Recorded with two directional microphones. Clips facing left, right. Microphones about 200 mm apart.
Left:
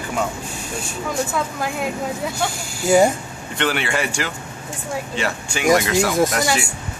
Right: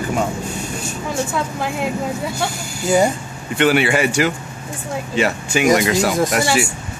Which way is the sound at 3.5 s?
10° right (ahead or behind).